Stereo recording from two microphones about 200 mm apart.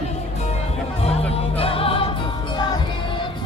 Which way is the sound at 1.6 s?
30° left (ahead or behind).